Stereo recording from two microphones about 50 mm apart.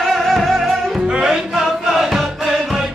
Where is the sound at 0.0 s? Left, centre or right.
Centre.